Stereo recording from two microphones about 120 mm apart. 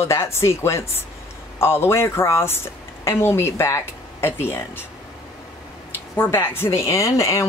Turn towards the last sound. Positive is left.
turn(degrees=25)  # may be behind; listen again after turning